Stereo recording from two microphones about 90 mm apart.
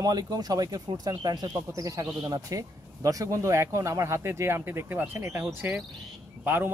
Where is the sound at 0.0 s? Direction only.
45° right (ahead or behind).